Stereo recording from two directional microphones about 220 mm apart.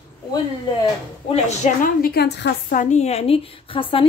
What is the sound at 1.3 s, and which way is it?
A woman's voice, 30° left (ahead or behind).